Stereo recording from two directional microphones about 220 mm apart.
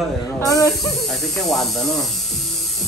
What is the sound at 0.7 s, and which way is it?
Speech, centre (ahead or behind).